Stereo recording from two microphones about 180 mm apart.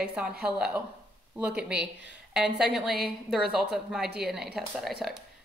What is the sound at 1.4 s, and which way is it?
A woman's voice, 5° right (ahead or behind).